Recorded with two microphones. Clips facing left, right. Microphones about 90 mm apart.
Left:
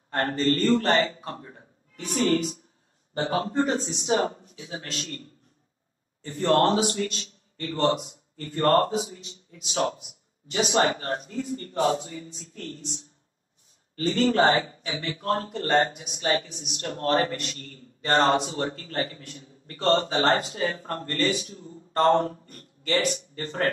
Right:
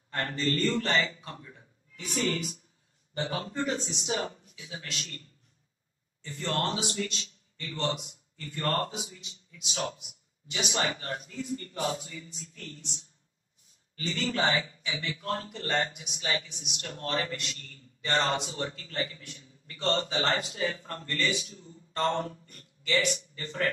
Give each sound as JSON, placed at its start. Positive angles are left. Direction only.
{"t": 0.1, "sound": "a man's voice", "side_deg": 45}